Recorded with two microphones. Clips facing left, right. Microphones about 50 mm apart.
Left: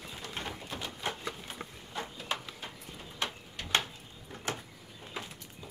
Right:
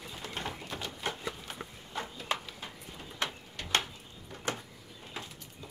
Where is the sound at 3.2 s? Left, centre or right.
Left.